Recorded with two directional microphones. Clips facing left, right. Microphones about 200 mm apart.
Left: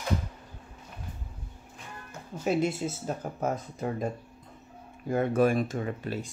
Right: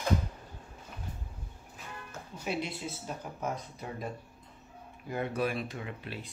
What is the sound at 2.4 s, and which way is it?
Speech, 45° left (ahead or behind).